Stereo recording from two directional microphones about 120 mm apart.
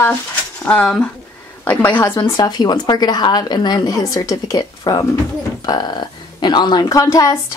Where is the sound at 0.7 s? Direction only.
10° left (ahead or behind).